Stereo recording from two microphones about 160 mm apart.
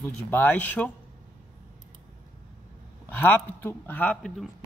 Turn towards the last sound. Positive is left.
turn(degrees=10)  # may be behind; listen again after turning